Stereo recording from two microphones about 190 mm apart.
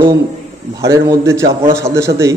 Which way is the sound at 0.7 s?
15° right (ahead or behind).